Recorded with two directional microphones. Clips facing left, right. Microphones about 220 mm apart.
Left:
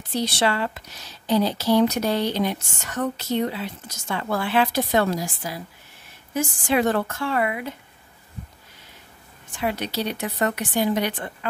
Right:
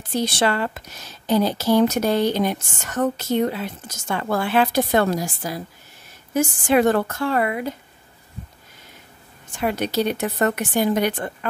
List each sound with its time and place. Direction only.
0.1 s a woman's voice: 50° right (ahead or behind)
9.6 s speech: 45° right (ahead or behind)